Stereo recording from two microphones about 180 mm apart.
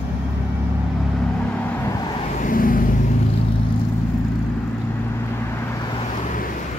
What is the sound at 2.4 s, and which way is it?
Vehicle, 50° left (ahead or behind).